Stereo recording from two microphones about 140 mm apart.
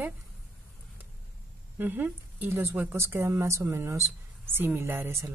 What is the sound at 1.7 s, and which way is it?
Speech, 15° right (ahead or behind).